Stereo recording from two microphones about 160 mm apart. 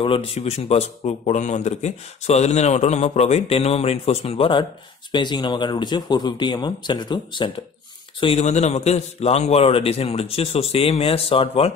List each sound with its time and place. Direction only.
0.0 s a man's voice: 35° left (ahead or behind)
8.2 s a man's voice: 40° left (ahead or behind)